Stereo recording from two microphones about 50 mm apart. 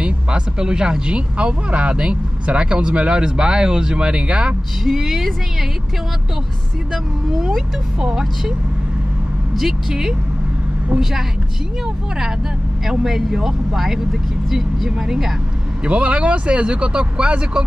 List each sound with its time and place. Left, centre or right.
0.0 s speech: centre
4.8 s speech: centre
8.0 s speech: centre
9.6 s speech: centre
13.0 s speech: centre
15.8 s speech: right